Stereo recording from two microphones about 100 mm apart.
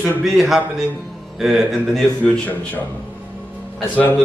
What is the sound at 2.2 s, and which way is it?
Speech, 15° left (ahead or behind).